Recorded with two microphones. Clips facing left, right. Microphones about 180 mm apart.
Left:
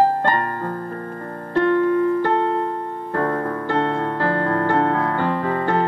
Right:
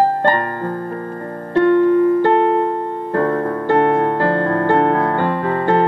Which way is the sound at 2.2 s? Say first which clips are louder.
Right 6 dB; 65° right (ahead or behind).